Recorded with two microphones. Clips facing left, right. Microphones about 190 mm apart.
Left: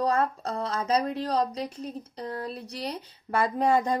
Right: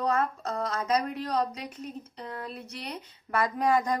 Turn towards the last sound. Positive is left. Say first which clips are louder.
# left 2 dB
turn(degrees=25)  # may be behind; listen again after turning